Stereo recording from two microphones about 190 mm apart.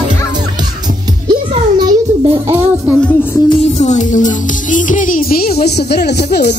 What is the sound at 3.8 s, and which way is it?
Speech, 40° left (ahead or behind).